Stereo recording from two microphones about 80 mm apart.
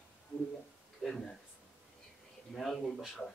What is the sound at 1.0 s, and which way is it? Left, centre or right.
Speech, centre.